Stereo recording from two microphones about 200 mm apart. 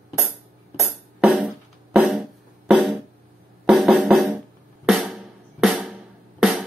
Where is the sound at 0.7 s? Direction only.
5° right (ahead or behind).